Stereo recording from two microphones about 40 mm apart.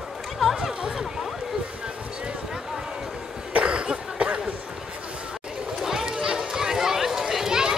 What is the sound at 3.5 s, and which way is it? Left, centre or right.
Cough, right.